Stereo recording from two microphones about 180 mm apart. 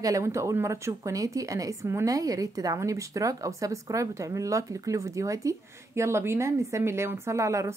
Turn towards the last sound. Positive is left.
turn(degrees=-15)  # may be behind; listen again after turning